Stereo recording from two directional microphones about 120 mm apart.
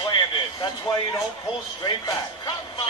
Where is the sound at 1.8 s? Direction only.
35° left (ahead or behind).